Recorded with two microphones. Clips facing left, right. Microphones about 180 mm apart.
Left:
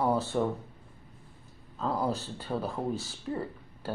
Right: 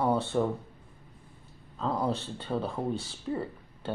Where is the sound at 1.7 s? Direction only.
Centre (ahead or behind).